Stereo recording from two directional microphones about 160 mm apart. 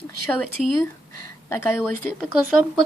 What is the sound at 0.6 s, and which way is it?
Speech, centre (ahead or behind).